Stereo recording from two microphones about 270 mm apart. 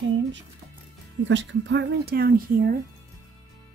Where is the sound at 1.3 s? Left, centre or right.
Right.